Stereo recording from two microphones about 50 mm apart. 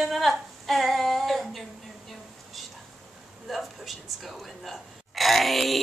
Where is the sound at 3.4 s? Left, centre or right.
Centre.